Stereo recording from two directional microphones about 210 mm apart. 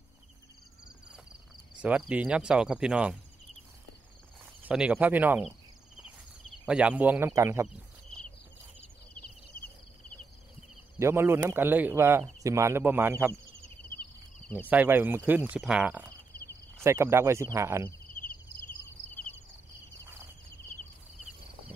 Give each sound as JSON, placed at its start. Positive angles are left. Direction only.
{"t": 1.8, "sound": "speech", "side_deg": -5}
{"t": 4.6, "sound": "speech", "side_deg": -5}
{"t": 6.7, "sound": "speech", "side_deg": -5}
{"t": 9.5, "sound": "cricket", "side_deg": 45}
{"t": 11.0, "sound": "speech", "side_deg": -10}
{"t": 14.7, "sound": "speech", "side_deg": -10}
{"t": 16.3, "sound": "a sound", "side_deg": 45}
{"t": 16.8, "sound": "speech", "side_deg": -15}
{"t": 18.2, "sound": "cricket", "side_deg": 40}